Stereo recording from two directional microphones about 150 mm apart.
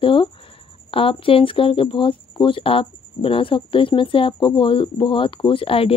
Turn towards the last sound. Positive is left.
turn(degrees=40)  # may be behind; listen again after turning